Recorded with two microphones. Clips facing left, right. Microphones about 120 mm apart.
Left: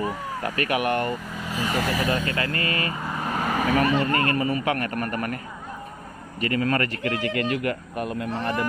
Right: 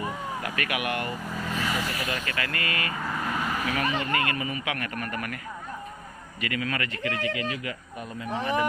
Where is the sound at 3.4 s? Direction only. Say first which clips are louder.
Left 9 dB; 45° left (ahead or behind).